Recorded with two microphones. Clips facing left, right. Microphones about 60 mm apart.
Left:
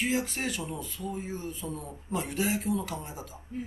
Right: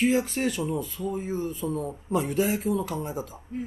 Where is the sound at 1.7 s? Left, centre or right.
Right.